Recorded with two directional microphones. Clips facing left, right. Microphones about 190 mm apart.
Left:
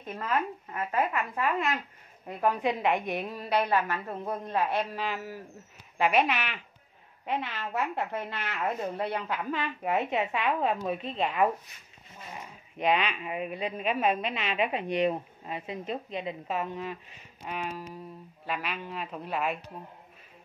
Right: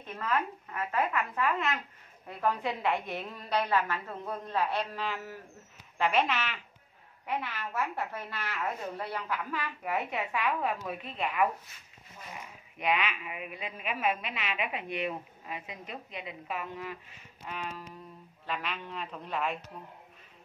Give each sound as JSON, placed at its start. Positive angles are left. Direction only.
{"t": 0.3, "sound": "a woman's voice", "side_deg": 25}
{"t": 1.3, "sound": "a woman's voice", "side_deg": 15}
{"t": 12.7, "sound": "a woman's voice", "side_deg": 25}